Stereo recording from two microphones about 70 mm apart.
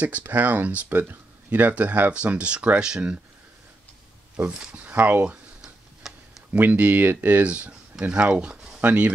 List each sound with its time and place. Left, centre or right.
0.0 s speech: right
4.6 s speech: centre
6.0 s a sound: centre
6.5 s speech: right